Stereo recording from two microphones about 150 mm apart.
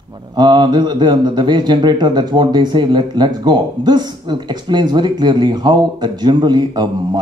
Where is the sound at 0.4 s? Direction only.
30° right (ahead or behind).